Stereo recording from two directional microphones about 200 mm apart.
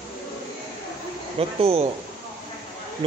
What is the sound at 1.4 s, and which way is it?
Speech, 30° right (ahead or behind).